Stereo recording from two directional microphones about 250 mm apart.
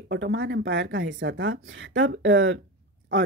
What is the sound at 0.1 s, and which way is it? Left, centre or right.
Speech, right.